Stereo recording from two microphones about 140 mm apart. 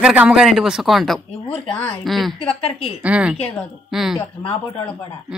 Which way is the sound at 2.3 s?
45° left (ahead or behind).